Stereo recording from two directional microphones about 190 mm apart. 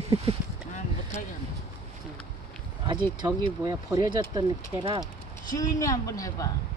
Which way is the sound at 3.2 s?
20° right (ahead or behind).